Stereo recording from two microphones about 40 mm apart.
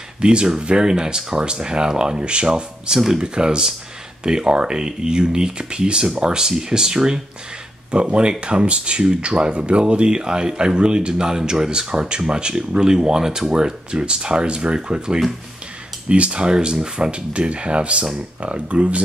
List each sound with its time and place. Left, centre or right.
0.2 s speech: right
17.3 s speech: right